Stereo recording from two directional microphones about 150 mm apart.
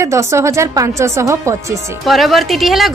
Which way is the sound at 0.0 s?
20° right (ahead or behind).